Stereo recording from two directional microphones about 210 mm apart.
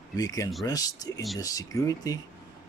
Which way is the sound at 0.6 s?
15° left (ahead or behind).